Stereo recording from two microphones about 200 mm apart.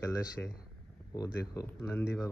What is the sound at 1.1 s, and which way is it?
Speech, 15° left (ahead or behind).